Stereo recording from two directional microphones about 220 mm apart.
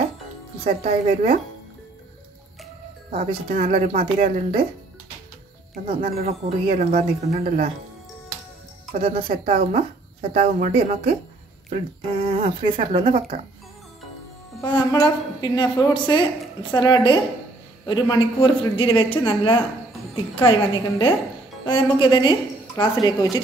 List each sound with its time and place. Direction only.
0.7 s speech: 30° right (ahead or behind)
3.1 s speech: 30° right (ahead or behind)
5.9 s speech: 30° right (ahead or behind)
8.9 s speech: 25° right (ahead or behind)
12.3 s speech: 30° right (ahead or behind)
14.6 s speech: 20° left (ahead or behind)